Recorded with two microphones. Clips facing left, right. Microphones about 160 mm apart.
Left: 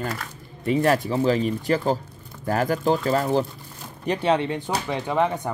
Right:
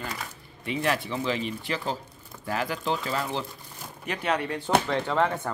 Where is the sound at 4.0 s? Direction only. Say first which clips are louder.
Left 7 dB; 30° left (ahead or behind); by 5.5 s 15° left (ahead or behind).